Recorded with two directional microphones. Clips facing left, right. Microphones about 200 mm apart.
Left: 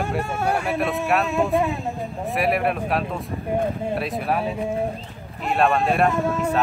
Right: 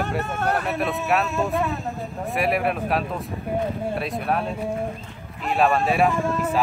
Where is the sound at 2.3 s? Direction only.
Centre (ahead or behind).